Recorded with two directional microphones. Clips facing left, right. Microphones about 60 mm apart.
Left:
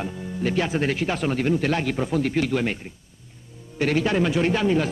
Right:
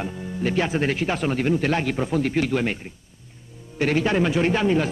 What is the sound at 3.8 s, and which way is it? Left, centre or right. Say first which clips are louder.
A man's voice: right 1 dB; right.